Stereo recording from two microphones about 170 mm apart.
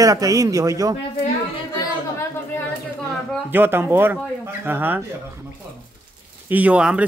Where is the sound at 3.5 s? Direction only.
10° right (ahead or behind).